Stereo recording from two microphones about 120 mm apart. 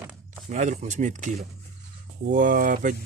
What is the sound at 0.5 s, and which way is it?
Speech, 80° right.